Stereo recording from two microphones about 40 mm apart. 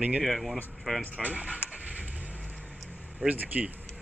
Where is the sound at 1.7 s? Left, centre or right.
Right.